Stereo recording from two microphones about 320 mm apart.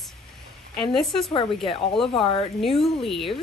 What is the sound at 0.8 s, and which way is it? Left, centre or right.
Speech, centre.